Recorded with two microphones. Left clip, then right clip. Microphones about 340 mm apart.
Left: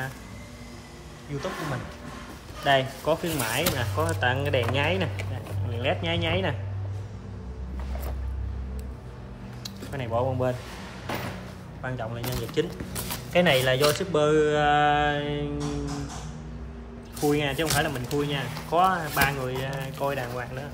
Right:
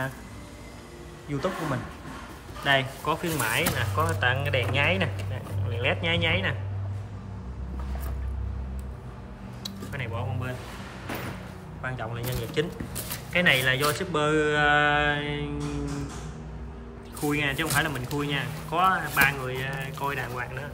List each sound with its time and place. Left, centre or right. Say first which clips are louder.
1.3 s speech: right 4 dB; centre
2.6 s speech: left 1 dB; centre
9.6 s a sound: even; centre
11.8 s speech: left 1 dB; centre
17.3 s speech: left 1 dB; centre